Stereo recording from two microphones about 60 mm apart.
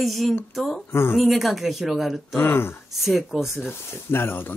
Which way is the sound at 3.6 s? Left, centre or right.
Left.